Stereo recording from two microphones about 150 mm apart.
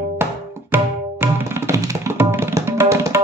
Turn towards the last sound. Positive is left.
turn(degrees=-20)  # may be behind; listen again after turning